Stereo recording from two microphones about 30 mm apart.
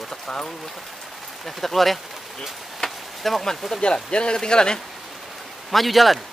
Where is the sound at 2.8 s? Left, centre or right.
Left.